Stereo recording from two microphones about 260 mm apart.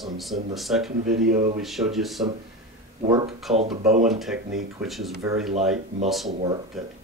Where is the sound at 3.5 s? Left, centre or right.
Right.